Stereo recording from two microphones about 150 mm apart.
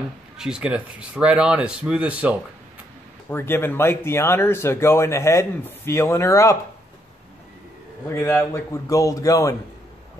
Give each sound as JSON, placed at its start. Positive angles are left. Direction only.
{"t": 0.4, "sound": "speech", "side_deg": -5}
{"t": 3.3, "sound": "speech", "side_deg": 15}
{"t": 8.1, "sound": "a man's voice", "side_deg": 15}